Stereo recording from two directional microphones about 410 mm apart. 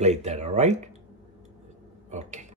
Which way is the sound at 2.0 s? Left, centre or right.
Centre.